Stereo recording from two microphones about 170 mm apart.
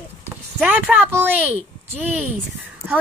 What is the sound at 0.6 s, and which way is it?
Speech, 10° right (ahead or behind).